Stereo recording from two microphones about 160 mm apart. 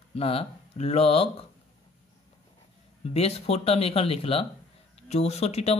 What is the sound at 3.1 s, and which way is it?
Speech, 40° left (ahead or behind).